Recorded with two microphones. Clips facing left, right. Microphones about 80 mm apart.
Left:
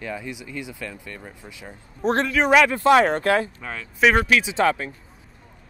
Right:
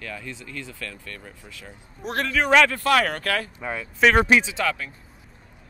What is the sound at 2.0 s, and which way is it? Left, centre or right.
Speech, left.